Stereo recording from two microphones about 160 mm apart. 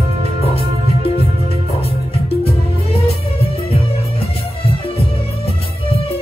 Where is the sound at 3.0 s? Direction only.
35° left (ahead or behind).